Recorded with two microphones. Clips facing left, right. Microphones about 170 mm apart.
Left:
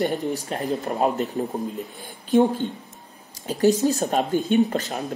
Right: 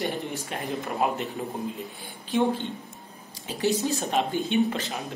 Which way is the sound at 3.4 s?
40° left (ahead or behind).